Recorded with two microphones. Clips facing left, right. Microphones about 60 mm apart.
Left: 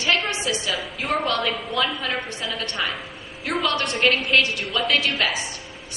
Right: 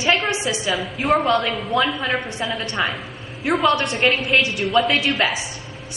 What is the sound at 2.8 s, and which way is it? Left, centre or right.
Speech, centre.